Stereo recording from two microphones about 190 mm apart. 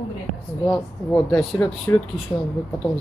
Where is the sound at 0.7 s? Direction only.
Centre (ahead or behind).